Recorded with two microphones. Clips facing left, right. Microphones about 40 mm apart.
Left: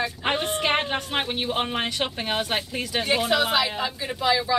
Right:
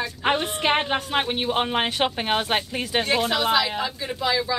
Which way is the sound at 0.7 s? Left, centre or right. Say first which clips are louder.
Right 5 dB; centre.